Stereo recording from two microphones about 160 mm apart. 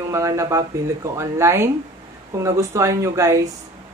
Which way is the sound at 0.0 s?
20° right (ahead or behind).